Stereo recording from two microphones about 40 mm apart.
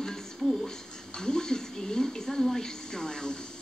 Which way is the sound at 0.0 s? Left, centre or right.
Centre.